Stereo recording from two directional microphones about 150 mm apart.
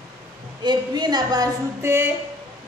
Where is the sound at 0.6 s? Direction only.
30° right (ahead or behind).